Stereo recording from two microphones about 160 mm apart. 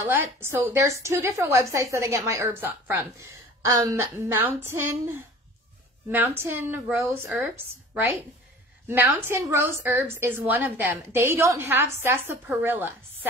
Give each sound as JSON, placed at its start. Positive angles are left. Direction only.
{"t": 0.0, "sound": "a woman's voice", "side_deg": -15}